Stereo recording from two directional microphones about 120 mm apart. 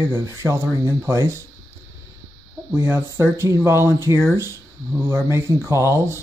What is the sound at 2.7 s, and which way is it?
Speech, 20° right (ahead or behind).